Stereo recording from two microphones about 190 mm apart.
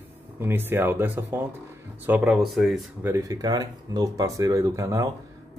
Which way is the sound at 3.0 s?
15° right (ahead or behind).